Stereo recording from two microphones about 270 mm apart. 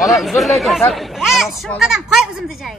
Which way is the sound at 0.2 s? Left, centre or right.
Centre.